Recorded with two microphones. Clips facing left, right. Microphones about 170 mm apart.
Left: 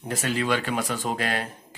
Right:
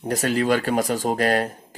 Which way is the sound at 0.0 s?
40° right (ahead or behind).